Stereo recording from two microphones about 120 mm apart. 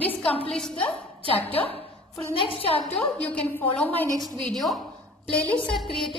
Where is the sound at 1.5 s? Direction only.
55° left (ahead or behind).